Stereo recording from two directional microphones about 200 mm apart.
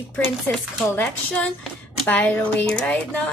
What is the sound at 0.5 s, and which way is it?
A woman's voice, 10° left (ahead or behind).